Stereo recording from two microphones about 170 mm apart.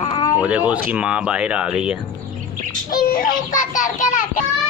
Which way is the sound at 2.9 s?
60° left (ahead or behind).